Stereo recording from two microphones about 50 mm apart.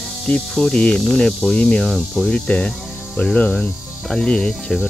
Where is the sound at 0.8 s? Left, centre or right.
Centre.